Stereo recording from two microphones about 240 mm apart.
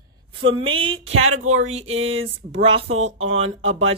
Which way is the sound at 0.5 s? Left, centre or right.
Right.